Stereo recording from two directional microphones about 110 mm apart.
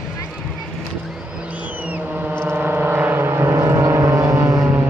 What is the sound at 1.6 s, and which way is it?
Vehicle, 15° right (ahead or behind).